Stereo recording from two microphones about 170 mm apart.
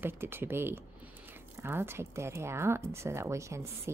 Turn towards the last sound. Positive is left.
turn(degrees=-15)  # may be behind; listen again after turning